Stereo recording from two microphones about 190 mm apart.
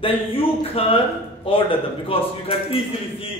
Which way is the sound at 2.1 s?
30° left (ahead or behind).